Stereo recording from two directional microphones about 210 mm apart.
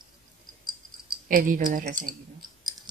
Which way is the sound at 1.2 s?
40° right (ahead or behind).